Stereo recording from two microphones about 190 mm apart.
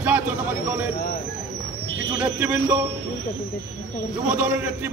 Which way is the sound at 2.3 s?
10° right (ahead or behind).